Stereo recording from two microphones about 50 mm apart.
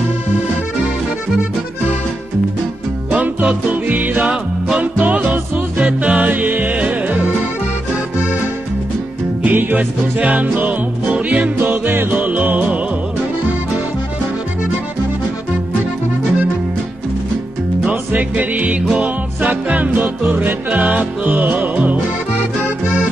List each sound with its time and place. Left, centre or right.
3.1 s music: right
4.2 s music: centre
4.9 s music: right
9.4 s music: right
11.6 s music: right
18.3 s music: right